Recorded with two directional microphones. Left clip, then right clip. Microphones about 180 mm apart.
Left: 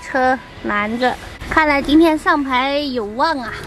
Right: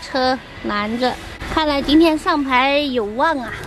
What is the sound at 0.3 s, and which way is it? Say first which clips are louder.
A woman's voice: left 2 dB; 10° left (ahead or behind).